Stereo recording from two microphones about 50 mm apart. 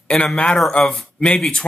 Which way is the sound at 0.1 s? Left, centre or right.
Centre.